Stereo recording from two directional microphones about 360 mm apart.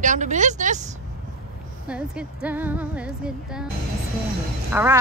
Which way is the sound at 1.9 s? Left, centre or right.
Centre.